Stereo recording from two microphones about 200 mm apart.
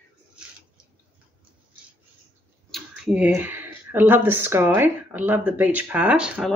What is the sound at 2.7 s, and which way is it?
Speech, 5° right (ahead or behind).